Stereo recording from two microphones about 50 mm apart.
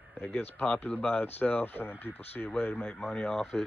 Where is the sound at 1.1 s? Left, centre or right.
Left.